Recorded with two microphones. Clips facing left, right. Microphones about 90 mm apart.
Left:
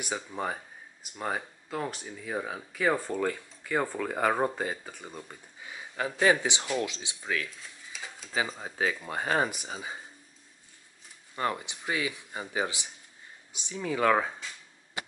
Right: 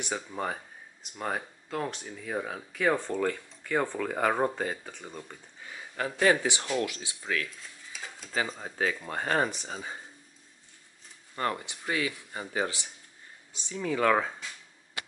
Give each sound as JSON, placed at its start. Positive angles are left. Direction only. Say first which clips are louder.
{"t": 0.0, "sound": "speech", "louder": "even", "side_deg": 5}
{"t": 7.6, "sound": "speech", "louder": "even", "side_deg": 0}
{"t": 11.3, "sound": "speech", "louder": "even", "side_deg": 15}